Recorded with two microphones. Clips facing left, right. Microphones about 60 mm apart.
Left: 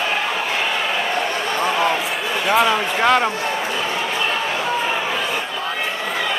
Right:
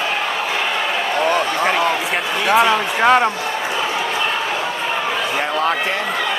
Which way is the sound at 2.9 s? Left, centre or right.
Centre.